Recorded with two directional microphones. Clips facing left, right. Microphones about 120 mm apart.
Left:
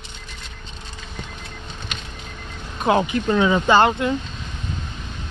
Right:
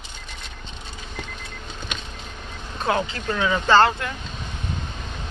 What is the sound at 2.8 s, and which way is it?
Speech, 20° left (ahead or behind).